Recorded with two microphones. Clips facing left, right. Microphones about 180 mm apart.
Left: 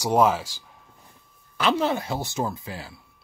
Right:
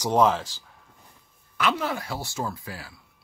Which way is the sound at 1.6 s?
25° left (ahead or behind).